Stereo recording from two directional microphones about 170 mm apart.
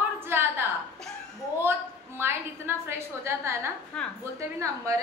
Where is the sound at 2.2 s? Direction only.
15° right (ahead or behind).